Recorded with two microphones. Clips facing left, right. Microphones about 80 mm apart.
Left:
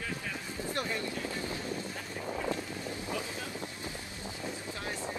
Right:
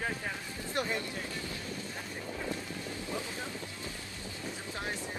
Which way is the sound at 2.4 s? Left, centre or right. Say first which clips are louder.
Left 3 dB; centre.